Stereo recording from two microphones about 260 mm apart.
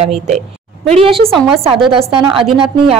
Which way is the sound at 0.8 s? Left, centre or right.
Right.